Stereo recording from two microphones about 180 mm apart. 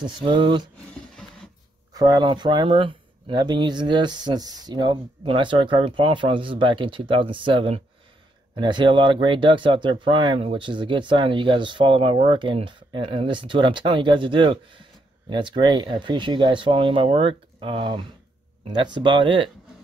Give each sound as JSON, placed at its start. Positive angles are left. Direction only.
{"t": 0.0, "sound": "speech", "side_deg": -25}
{"t": 2.0, "sound": "speech", "side_deg": -20}